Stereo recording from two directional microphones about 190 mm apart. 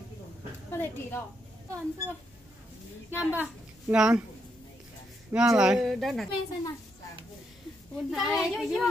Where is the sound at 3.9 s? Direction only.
5° right (ahead or behind).